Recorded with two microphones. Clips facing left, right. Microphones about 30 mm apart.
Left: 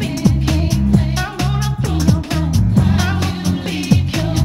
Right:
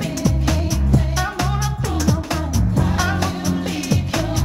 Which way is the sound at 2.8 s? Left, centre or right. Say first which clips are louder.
Left 2 dB; left.